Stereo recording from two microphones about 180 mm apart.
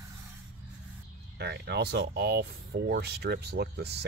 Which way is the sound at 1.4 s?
65° right (ahead or behind).